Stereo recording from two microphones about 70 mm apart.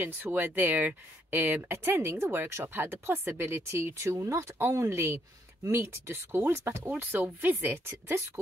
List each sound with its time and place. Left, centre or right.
0.0 s speech: right